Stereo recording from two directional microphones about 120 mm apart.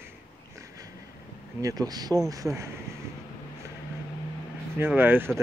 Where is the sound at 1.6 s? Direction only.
30° right (ahead or behind).